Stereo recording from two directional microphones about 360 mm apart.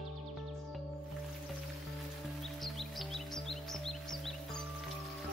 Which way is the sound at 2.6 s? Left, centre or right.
Centre.